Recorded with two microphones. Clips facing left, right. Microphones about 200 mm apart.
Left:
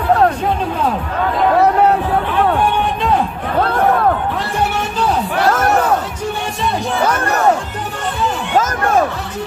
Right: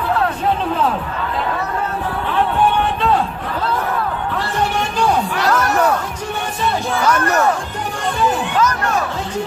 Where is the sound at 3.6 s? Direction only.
60° left (ahead or behind).